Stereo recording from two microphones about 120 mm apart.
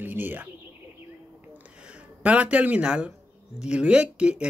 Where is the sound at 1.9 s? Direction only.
10° right (ahead or behind).